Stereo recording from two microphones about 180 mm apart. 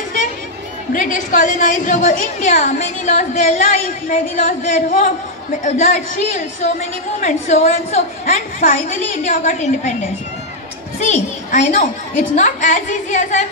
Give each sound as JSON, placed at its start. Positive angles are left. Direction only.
{"t": 0.9, "sound": "a woman's voice", "side_deg": 45}
{"t": 11.0, "sound": "a woman's voice", "side_deg": 40}